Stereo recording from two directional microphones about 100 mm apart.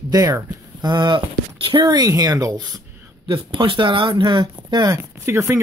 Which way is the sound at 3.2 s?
55° right (ahead or behind).